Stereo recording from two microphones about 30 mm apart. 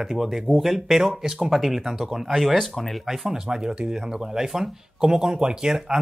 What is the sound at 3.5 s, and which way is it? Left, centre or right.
Speech, right.